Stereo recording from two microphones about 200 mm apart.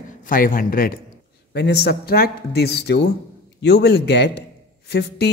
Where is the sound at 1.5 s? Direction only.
55° left (ahead or behind).